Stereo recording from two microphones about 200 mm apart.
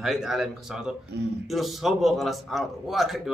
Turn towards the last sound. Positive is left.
turn(degrees=0)  # may be behind; listen again after turning